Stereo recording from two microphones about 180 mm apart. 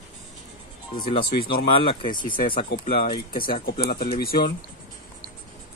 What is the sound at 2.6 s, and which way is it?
A man's voice, 55° left (ahead or behind).